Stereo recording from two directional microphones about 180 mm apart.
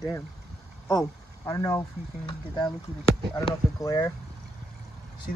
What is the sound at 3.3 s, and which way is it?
Speech, 20° left (ahead or behind).